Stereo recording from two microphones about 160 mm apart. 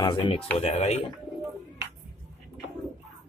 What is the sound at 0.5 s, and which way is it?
Speech, 40° left (ahead or behind).